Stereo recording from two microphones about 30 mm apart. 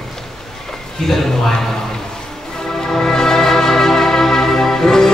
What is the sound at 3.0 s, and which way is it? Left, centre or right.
Music, centre.